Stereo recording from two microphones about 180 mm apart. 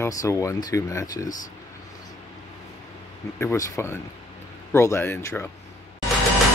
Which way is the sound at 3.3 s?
15° left (ahead or behind).